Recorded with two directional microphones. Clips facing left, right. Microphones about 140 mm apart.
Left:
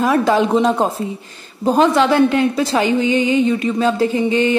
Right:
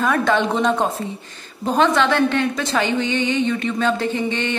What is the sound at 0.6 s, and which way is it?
Music, 30° left (ahead or behind).